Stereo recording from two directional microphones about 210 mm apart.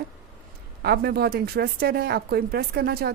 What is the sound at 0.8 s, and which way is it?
Speech, 50° right (ahead or behind).